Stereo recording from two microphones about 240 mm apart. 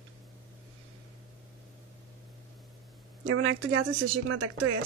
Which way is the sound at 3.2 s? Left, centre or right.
Right.